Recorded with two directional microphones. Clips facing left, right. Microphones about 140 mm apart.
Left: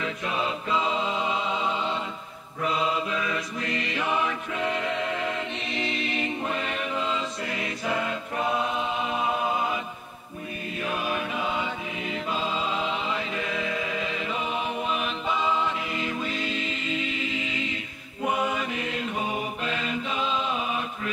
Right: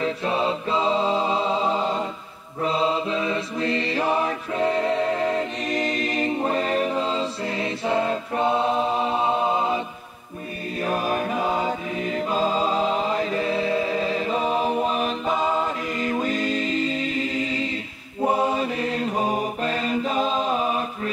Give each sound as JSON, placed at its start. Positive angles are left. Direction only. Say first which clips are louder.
{"t": 0.0, "sound": "mantra", "louder": "right 6 dB", "side_deg": -30}
{"t": 10.8, "sound": "music", "louder": "right 6 dB", "side_deg": -40}
{"t": 18.2, "sound": "mantra", "louder": "right 5 dB", "side_deg": -35}